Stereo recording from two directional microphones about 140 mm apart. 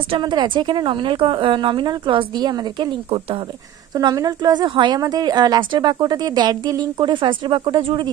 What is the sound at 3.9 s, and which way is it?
A woman's voice, 30° right (ahead or behind).